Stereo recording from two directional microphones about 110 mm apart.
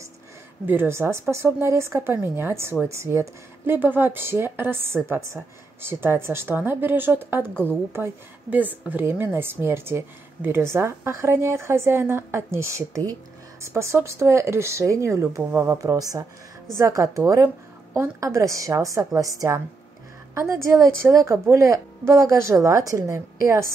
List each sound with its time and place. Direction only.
0.7 s a woman's voice: 20° right (ahead or behind)